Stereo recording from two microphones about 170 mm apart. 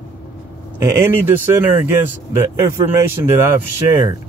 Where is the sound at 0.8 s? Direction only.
15° right (ahead or behind).